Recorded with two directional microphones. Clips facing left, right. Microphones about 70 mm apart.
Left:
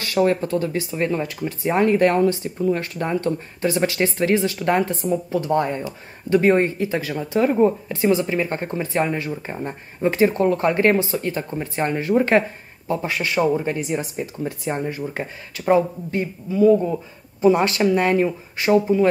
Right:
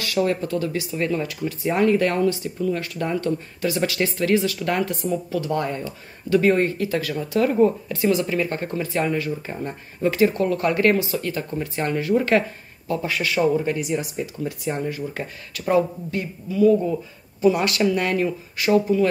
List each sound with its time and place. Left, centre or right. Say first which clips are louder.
0.0 s speech: left 3 dB; left